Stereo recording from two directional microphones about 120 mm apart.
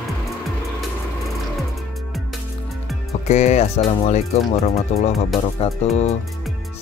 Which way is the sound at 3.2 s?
70° left (ahead or behind).